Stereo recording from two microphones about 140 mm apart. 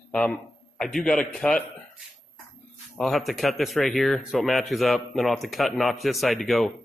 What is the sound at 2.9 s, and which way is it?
A man's voice, centre (ahead or behind).